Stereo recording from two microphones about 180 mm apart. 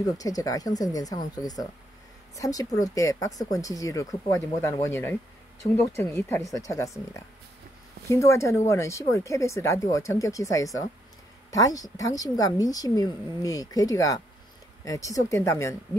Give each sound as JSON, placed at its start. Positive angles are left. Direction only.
{"t": 0.2, "sound": "speech", "side_deg": 20}